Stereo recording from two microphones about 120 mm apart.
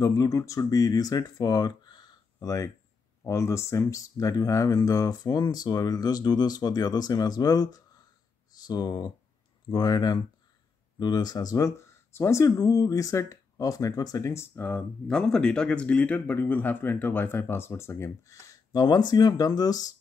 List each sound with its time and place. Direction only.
0.0 s speech: 30° left (ahead or behind)